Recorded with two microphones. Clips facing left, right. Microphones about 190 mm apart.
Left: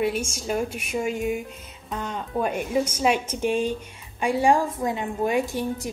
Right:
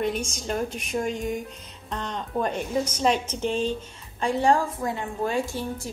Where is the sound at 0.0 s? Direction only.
10° left (ahead or behind).